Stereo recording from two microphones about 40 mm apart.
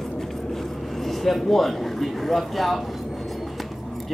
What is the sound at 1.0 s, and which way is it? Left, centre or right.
Speech, centre.